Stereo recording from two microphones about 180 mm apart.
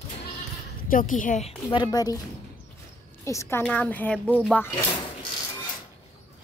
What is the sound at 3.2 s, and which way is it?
A woman's voice, 15° left (ahead or behind).